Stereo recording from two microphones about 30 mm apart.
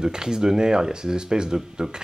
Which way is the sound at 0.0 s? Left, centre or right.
Right.